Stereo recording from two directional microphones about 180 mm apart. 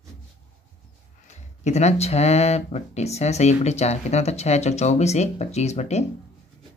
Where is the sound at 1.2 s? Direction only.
40° left (ahead or behind).